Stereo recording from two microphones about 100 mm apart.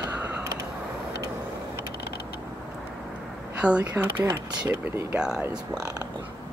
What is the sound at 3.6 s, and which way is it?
Speech, 15° right (ahead or behind).